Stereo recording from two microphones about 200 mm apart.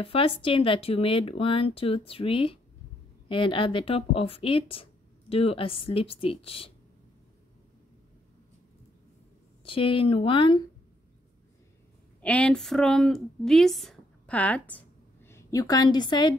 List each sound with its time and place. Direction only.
0.0 s speech: 25° left (ahead or behind)
9.7 s speech: 25° left (ahead or behind)
12.2 s a woman's voice: 5° left (ahead or behind); by 16.3 s 20° left (ahead or behind)